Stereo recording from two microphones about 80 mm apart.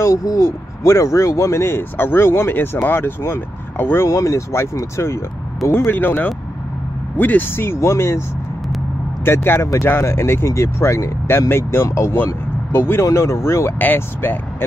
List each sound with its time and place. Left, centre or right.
0.0 s speech: left
5.9 s speech: left
9.2 s speech: left
13.7 s speech: left